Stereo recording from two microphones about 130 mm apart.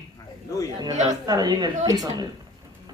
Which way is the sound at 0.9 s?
65° right (ahead or behind).